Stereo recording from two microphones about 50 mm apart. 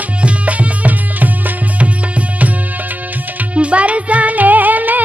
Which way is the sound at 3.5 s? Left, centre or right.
Right.